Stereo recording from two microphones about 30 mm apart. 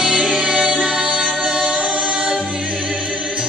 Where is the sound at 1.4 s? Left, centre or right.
Right.